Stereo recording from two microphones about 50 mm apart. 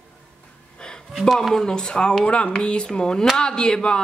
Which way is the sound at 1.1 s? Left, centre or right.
Centre.